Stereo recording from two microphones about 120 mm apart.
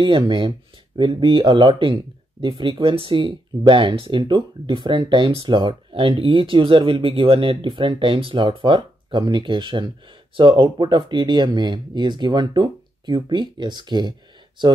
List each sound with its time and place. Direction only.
0.0 s speech: 45° right (ahead or behind)